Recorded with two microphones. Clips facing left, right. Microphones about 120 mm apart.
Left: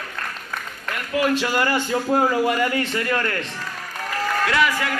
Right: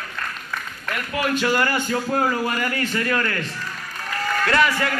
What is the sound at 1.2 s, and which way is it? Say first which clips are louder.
A man's voice: left 1 dB; 20° left (ahead or behind).